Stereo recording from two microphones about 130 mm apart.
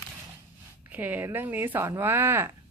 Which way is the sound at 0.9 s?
15° right (ahead or behind).